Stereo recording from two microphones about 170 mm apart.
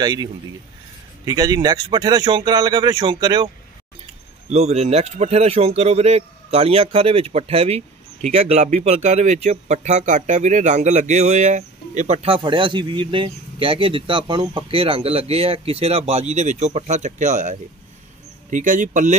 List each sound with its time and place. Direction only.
0.0 s speech: 25° right (ahead or behind)
4.5 s speech: 40° right (ahead or behind)